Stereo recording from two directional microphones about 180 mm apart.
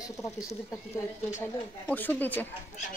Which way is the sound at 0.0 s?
20° left (ahead or behind).